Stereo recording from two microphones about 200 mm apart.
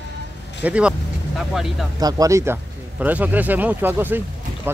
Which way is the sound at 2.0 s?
15° right (ahead or behind).